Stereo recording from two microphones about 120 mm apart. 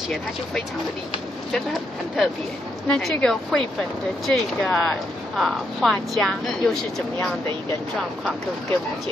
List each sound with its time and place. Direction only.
1.5 s a woman's voice: centre (ahead or behind)